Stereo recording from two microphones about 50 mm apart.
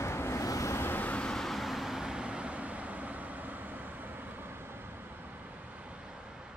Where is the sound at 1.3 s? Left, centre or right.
Centre.